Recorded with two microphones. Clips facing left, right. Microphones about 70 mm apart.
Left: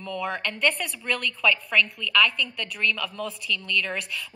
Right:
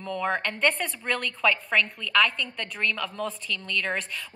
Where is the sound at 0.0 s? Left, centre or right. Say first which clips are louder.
Right 2 dB; right.